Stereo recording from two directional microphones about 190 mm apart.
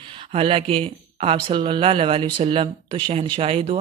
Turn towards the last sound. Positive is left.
turn(degrees=-30)  # may be behind; listen again after turning